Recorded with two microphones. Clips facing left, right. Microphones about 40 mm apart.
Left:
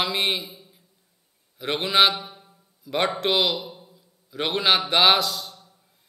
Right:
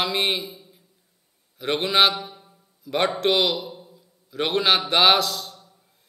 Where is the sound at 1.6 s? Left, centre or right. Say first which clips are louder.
Even; centre.